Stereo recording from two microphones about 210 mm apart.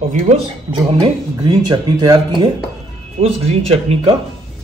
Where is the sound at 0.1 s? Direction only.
30° right (ahead or behind).